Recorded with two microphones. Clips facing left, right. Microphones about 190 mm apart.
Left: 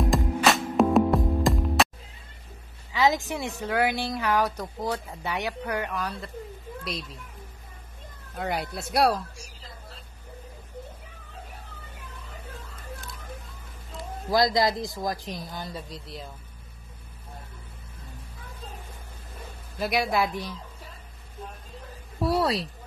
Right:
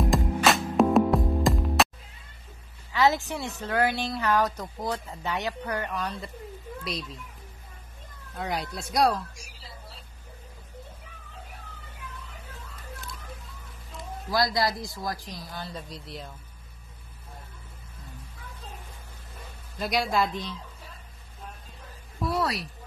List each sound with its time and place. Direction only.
0.0 s music: centre (ahead or behind)
2.9 s speech: 15° left (ahead or behind)
6.8 s speech: centre (ahead or behind)
8.7 s speech: 5° left (ahead or behind)
9.3 s a sound: 10° right (ahead or behind)
14.3 s speech: 20° left (ahead or behind)
15.7 s speech: centre (ahead or behind)
19.8 s speech: 5° left (ahead or behind)
22.2 s speech: 30° left (ahead or behind)